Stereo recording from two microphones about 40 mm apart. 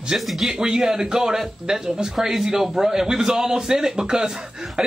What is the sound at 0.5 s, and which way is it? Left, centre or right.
Speech, centre.